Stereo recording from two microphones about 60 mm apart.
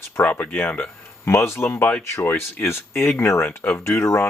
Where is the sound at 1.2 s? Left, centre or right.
Left.